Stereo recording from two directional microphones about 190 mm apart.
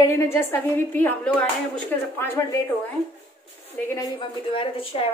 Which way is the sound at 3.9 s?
20° left (ahead or behind).